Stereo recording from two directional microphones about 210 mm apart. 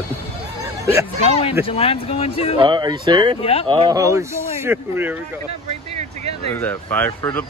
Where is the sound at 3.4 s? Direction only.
30° left (ahead or behind).